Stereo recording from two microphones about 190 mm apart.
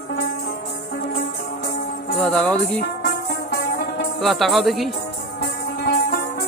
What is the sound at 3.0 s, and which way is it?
Music, 55° left (ahead or behind).